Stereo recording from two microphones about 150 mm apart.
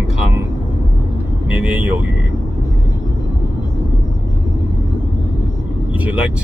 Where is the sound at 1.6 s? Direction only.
10° right (ahead or behind).